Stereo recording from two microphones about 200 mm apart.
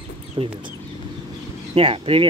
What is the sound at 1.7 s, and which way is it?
Speech, 30° right (ahead or behind).